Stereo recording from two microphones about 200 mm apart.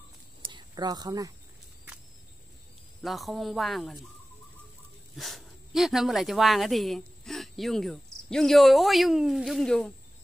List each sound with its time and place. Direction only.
0.4 s a sound: 20° right (ahead or behind)
3.0 s speech: centre (ahead or behind)
5.1 s speech: centre (ahead or behind)